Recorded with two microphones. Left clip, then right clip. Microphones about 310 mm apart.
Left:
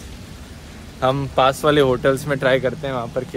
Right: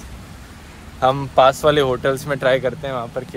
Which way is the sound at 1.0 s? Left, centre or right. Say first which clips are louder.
Right 3 dB; centre.